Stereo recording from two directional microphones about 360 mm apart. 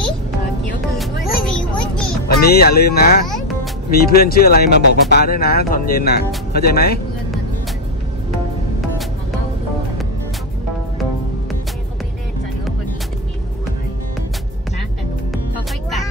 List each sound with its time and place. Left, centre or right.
2.2 s speech: left